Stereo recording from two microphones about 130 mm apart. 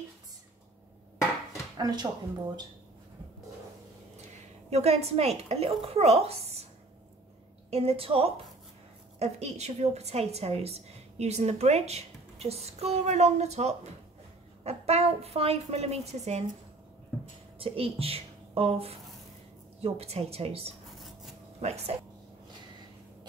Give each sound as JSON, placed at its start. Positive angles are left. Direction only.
{"t": 1.8, "sound": "speech", "side_deg": -30}
{"t": 4.6, "sound": "a woman's voice", "side_deg": -55}
{"t": 7.7, "sound": "a woman's voice", "side_deg": -50}
{"t": 9.2, "sound": "a woman's voice", "side_deg": -60}
{"t": 17.6, "sound": "a woman's voice", "side_deg": -45}